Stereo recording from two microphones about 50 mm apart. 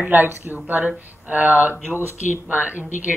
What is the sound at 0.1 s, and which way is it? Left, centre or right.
A woman's voice, right.